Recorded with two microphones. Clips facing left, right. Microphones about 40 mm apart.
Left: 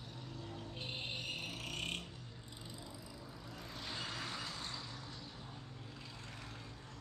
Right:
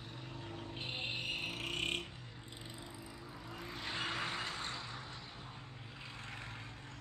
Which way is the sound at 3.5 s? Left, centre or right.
Right.